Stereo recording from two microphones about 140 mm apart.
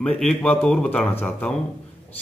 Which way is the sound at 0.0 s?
5° left (ahead or behind).